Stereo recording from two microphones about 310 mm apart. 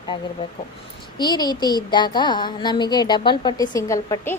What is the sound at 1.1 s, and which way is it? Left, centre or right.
Speech, centre.